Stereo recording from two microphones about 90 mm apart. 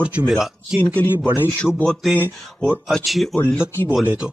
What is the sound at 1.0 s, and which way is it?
Speech, 20° left (ahead or behind).